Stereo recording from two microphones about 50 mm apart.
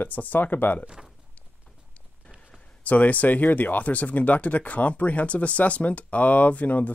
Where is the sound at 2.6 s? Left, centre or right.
Left.